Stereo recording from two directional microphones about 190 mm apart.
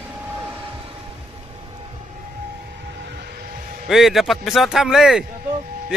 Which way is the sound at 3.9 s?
Centre (ahead or behind).